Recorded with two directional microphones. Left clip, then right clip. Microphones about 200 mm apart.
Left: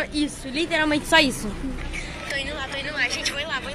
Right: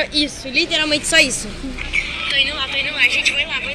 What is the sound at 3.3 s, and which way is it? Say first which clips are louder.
Speech: right 8 dB; 10° left (ahead or behind).